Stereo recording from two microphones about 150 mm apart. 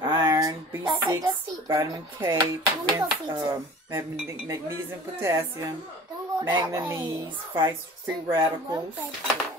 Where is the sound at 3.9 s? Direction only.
20° right (ahead or behind).